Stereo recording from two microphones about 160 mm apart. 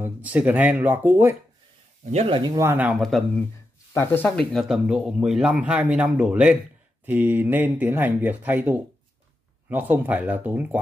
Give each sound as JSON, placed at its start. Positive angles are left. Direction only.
{"t": 0.0, "sound": "speech", "side_deg": -10}
{"t": 2.0, "sound": "speech", "side_deg": -40}
{"t": 2.6, "sound": "speech", "side_deg": -10}
{"t": 3.0, "sound": "speech", "side_deg": 0}
{"t": 3.9, "sound": "speech", "side_deg": 15}